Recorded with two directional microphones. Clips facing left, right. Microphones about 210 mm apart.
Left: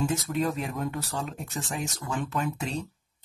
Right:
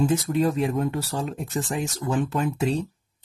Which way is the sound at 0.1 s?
35° right (ahead or behind).